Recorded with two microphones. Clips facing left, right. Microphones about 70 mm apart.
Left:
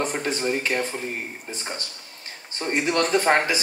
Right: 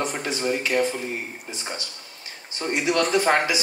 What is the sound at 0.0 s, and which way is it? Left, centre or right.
Speech, left.